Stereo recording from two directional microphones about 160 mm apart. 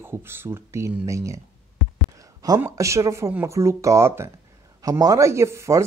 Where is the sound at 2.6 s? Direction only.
20° right (ahead or behind).